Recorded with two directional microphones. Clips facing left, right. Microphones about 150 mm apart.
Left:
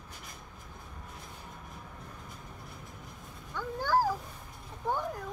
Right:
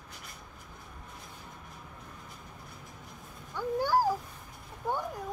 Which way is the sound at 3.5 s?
10° right (ahead or behind).